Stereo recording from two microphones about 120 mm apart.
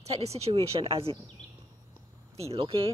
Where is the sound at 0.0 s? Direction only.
60° right (ahead or behind).